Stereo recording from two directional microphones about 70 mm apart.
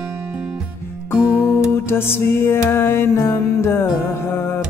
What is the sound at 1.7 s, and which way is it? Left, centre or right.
Music, left.